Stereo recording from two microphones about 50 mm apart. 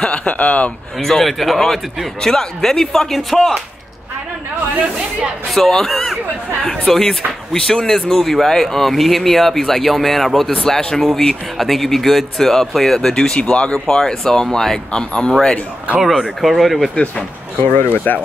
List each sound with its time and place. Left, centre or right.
0.0 s a man's voice: left
0.9 s speech: centre
5.5 s speech: centre
10.5 s a man's voice: centre
13.7 s speech: centre
16.0 s speech: centre
17.8 s speech: left